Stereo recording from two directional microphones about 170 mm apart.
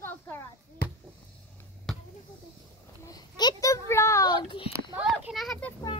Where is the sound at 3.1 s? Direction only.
20° left (ahead or behind).